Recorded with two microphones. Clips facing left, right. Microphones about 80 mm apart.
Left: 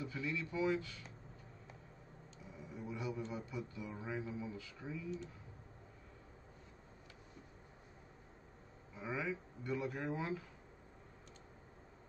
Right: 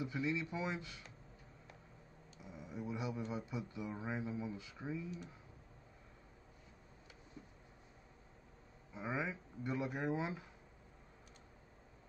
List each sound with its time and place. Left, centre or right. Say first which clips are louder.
0.0 s speech: right 3 dB; centre
2.4 s a sound: right 3 dB; centre
3.3 s speech: right 1 dB; centre
8.9 s speech: even; right